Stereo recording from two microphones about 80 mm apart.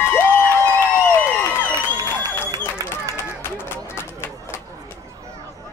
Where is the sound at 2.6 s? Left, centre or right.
Left.